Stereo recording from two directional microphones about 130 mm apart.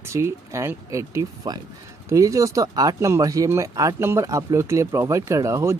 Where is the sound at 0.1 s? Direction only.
20° right (ahead or behind).